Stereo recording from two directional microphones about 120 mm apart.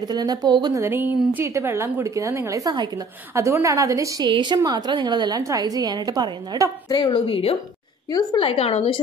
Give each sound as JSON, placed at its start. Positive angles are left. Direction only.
{"t": 0.0, "sound": "a woman's voice", "side_deg": -35}
{"t": 0.8, "sound": "a woman's voice", "side_deg": -15}
{"t": 4.3, "sound": "a woman's voice", "side_deg": -40}
{"t": 6.9, "sound": "a woman's voice", "side_deg": 40}
{"t": 8.1, "sound": "a woman's voice", "side_deg": 30}
{"t": 8.4, "sound": "a woman's voice", "side_deg": 55}